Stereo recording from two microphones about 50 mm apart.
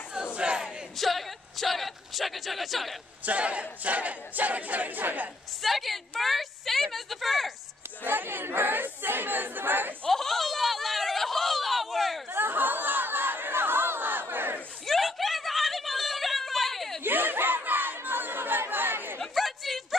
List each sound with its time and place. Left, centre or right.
0.1 s battle cry: centre
0.9 s speech: centre
3.3 s crowd: right
5.6 s a woman's voice: centre
8.0 s speech: right
10.0 s a sound: centre
12.3 s crowd: right
14.9 s a sound: centre
17.0 s crowd: right
19.3 s a sound: centre